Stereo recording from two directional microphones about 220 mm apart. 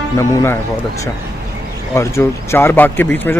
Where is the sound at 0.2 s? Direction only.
15° left (ahead or behind).